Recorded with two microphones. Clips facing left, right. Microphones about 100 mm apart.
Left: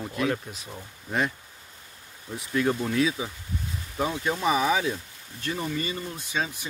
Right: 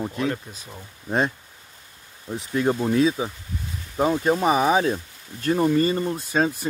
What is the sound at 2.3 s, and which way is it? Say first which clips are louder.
Speech: right 3 dB; 30° right (ahead or behind).